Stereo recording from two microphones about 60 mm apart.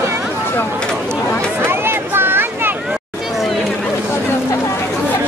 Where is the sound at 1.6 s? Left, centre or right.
Right.